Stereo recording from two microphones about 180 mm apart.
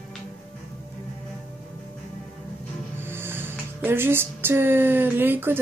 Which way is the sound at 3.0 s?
10° right (ahead or behind).